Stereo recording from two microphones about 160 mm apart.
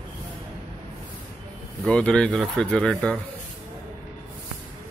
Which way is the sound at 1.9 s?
5° left (ahead or behind).